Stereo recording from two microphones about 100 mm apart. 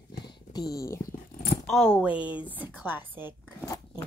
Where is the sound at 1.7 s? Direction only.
5° right (ahead or behind).